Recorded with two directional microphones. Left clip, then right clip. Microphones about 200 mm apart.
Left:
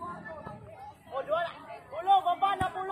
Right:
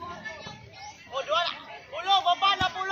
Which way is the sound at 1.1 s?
50° left (ahead or behind).